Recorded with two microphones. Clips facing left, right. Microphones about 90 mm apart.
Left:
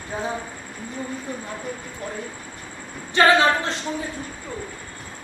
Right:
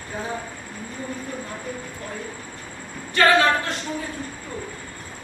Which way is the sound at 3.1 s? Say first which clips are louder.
Left 1 dB; 20° left (ahead or behind).